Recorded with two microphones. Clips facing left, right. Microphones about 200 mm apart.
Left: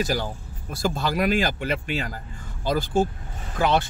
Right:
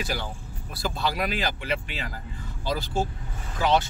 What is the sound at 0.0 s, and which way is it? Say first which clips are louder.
Speech: left 6 dB; 40° left (ahead or behind).